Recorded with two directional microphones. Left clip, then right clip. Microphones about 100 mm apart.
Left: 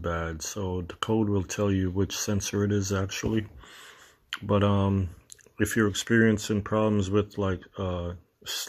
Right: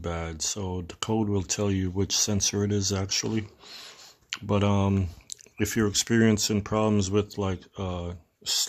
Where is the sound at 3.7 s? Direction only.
40° right (ahead or behind).